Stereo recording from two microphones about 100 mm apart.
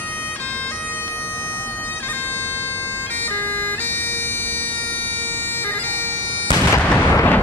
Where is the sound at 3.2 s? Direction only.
20° left (ahead or behind).